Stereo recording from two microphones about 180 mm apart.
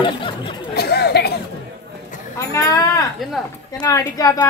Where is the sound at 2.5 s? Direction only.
20° left (ahead or behind).